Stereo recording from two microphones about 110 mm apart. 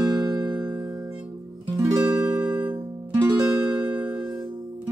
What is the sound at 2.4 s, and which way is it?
Music, 30° right (ahead or behind).